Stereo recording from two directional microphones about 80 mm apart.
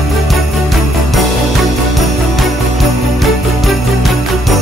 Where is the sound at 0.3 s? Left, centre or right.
Centre.